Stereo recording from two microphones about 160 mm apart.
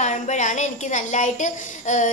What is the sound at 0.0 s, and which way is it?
A woman's voice, 45° left (ahead or behind).